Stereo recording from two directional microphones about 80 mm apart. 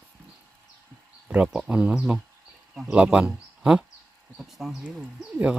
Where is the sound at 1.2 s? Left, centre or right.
Centre.